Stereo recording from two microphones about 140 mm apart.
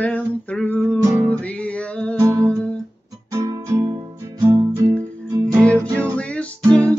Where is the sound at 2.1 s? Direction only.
20° right (ahead or behind).